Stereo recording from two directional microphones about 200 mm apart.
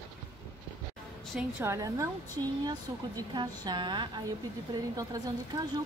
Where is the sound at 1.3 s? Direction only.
15° right (ahead or behind).